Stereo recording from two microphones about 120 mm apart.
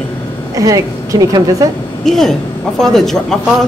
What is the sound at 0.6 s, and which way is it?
A woman's voice, 30° right (ahead or behind).